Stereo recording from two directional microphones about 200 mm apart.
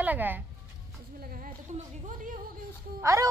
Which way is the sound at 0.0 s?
10° right (ahead or behind).